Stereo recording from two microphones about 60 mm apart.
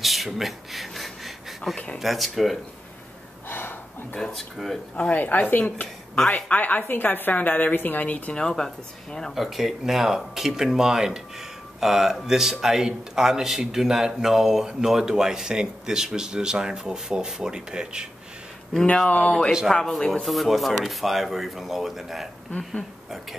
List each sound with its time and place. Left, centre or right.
0.0 s a sound: centre
2.0 s speech: centre
3.4 s gasp: left
4.3 s speech: centre
4.9 s speech: left
5.2 s a woman's voice: left
8.4 s speech: centre
9.3 s a man's voice: centre
19.0 s speech: left
19.7 s speech: centre